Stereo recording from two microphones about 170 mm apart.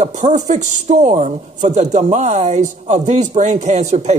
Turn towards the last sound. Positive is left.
turn(degrees=-40)  # may be behind; listen again after turning